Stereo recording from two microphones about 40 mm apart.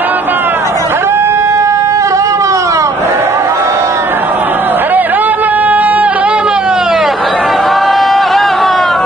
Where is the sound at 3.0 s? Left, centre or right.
Right; by 7.0 s centre.